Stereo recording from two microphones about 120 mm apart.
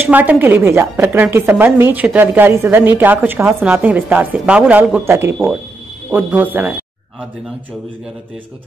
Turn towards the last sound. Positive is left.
turn(degrees=-15)  # may be behind; listen again after turning